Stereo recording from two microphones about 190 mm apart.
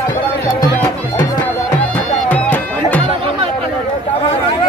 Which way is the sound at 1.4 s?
10° left (ahead or behind).